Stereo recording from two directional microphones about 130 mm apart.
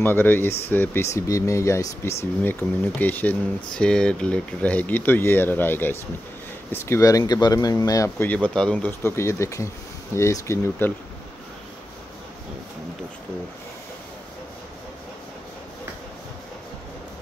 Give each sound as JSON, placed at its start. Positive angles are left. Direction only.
{"t": 0.0, "sound": "speech", "side_deg": 15}
{"t": 8.3, "sound": "speech", "side_deg": 5}
{"t": 9.0, "sound": "speech", "side_deg": 20}